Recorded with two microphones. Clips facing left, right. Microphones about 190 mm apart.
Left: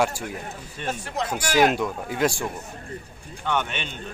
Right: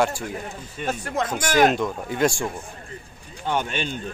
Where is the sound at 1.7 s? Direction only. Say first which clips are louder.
Right 1 dB; 5° left (ahead or behind).